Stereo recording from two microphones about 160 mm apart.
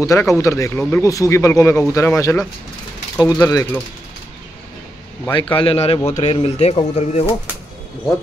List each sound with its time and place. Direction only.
0.0 s speech: 20° left (ahead or behind)
5.3 s speech: 30° left (ahead or behind)